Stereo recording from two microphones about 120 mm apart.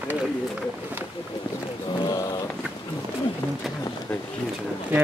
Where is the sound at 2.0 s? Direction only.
35° left (ahead or behind).